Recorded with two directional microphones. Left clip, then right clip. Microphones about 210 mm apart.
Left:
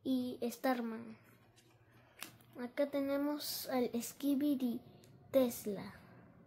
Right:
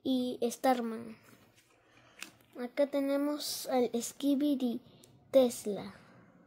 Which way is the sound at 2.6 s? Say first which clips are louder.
Right 5 dB; 35° right (ahead or behind).